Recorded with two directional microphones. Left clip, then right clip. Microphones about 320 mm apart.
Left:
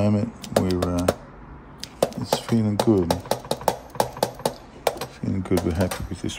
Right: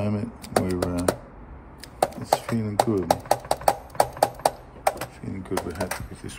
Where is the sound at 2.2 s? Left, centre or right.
Centre.